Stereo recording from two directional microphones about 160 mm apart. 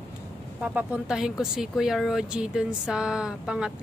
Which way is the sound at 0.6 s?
5° right (ahead or behind).